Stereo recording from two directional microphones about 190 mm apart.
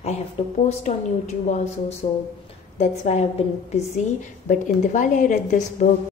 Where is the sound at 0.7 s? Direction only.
35° left (ahead or behind).